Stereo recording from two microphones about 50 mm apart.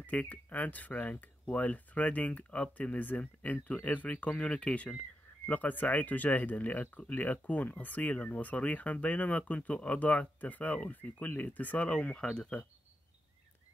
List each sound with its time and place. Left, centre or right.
0.0 s speech: left
11.9 s speech: left